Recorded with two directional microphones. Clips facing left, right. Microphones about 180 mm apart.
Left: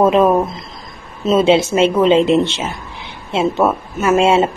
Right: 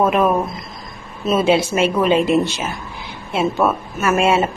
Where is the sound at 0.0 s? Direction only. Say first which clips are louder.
Left 4 dB; 25° left (ahead or behind).